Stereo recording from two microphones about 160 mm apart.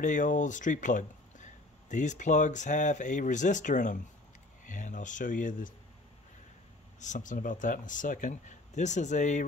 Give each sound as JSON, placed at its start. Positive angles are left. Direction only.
{"t": 0.0, "sound": "speech", "side_deg": 55}
{"t": 7.0, "sound": "speech", "side_deg": 50}